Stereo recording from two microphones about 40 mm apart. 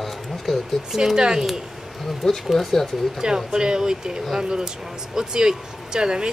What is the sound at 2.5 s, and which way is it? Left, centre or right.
Speech, centre.